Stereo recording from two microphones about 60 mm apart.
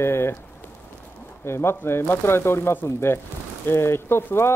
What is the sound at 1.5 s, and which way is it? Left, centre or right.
Speech, left.